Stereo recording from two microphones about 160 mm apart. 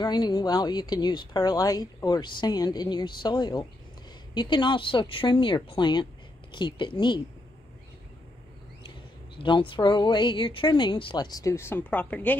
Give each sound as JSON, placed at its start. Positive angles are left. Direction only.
{"t": 0.0, "sound": "a woman's voice", "side_deg": 25}
{"t": 9.4, "sound": "a woman's voice", "side_deg": 30}